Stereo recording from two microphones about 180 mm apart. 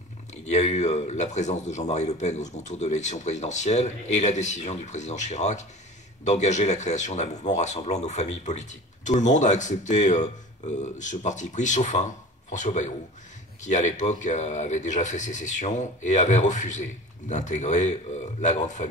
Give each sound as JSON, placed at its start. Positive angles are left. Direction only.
{"t": 0.5, "sound": "speech", "side_deg": 40}